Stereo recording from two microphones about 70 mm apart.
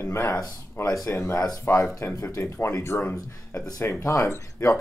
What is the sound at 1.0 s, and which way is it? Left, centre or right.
Speech, left.